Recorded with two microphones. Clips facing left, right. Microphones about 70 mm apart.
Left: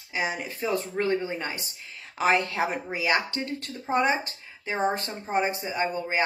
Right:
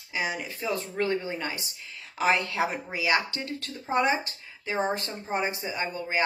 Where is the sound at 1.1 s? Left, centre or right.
Left.